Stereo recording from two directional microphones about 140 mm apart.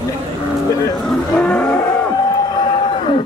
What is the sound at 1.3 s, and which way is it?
Vehicle, 10° left (ahead or behind).